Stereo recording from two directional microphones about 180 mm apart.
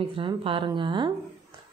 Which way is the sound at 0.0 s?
30° right (ahead or behind).